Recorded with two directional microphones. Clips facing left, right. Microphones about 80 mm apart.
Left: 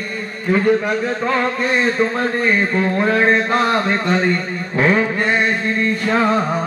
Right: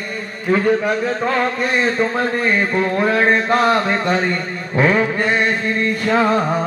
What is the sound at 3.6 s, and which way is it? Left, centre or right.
Mantra, centre.